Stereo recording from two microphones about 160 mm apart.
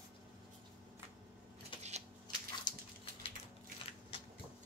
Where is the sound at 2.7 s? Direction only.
25° left (ahead or behind).